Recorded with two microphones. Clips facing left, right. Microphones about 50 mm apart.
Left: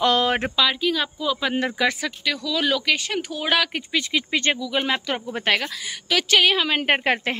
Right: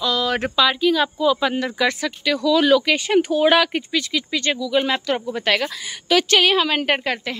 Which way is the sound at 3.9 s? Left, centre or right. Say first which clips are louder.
Left 2 dB; left.